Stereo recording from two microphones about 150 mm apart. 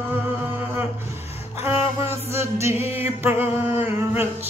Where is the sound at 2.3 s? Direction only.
20° right (ahead or behind).